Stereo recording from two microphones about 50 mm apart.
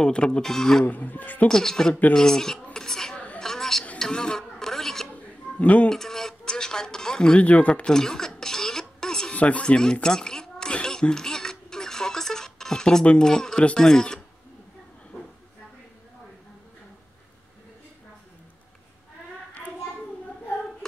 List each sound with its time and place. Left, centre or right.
0.0 s speech: centre
0.8 s a man's voice: left
1.5 s speech: centre
2.7 s music: centre
3.3 s a sound: centre
5.1 s a sound: left
5.9 s a sound: centre
7.3 s speech: left
7.9 s speech: centre
8.4 s cough: centre
9.3 s speech: left
10.0 s a sound: centre
13.2 s speech: centre